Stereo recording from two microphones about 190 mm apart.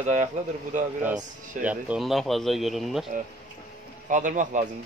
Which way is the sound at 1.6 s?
5° right (ahead or behind).